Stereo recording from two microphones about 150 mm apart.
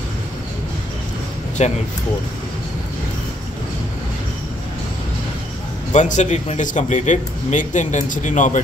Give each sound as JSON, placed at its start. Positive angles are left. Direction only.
{"t": 1.6, "sound": "speech", "side_deg": 50}
{"t": 5.9, "sound": "speech", "side_deg": 55}